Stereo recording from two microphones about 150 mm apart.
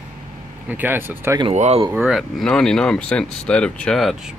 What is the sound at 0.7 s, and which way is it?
Speech, 10° right (ahead or behind).